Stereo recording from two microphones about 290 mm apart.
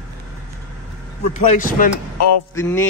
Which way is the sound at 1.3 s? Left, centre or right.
Left.